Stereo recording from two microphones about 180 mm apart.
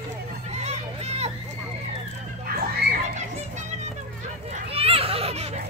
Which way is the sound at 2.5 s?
55° right (ahead or behind).